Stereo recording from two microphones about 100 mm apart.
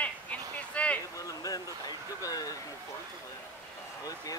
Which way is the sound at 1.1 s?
35° left (ahead or behind).